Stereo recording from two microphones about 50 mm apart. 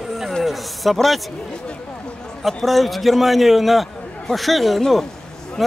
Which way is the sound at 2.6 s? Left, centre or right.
Centre.